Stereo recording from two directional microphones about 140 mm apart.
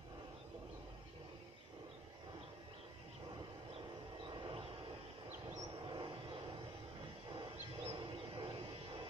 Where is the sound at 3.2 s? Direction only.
35° right (ahead or behind).